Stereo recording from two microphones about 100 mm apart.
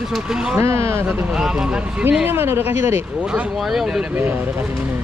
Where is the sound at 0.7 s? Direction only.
25° right (ahead or behind).